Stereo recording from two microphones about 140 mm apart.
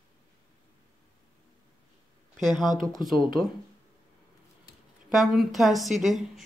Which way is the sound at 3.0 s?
Centre (ahead or behind).